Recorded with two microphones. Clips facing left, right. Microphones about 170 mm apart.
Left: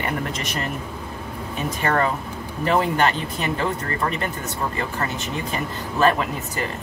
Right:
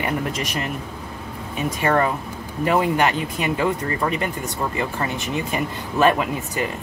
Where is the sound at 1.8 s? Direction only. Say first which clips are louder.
Right 2 dB; 15° right (ahead or behind).